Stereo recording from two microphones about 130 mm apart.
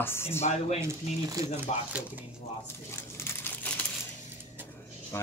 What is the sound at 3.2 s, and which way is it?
Crumpling, 15° left (ahead or behind).